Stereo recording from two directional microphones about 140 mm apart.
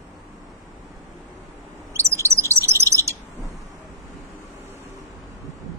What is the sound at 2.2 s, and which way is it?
Bird, 20° right (ahead or behind).